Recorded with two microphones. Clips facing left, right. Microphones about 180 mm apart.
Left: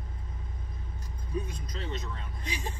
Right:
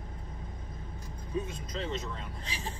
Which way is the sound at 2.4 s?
15° left (ahead or behind).